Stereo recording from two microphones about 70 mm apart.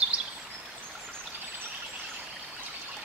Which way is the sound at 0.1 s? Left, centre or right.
Centre.